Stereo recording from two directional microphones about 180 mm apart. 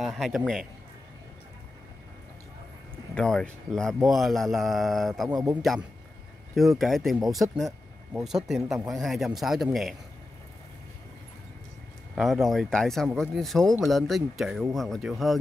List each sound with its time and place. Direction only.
0.0 s speech: centre (ahead or behind)
3.2 s speech: 5° left (ahead or behind)
5.3 s speech: 20° right (ahead or behind)
5.6 s speech: centre (ahead or behind)
12.2 s speech: centre (ahead or behind)